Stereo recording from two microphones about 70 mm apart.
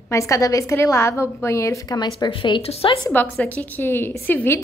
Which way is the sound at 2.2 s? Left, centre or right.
Left.